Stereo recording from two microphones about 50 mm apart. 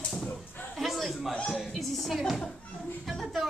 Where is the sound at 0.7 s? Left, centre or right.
Centre.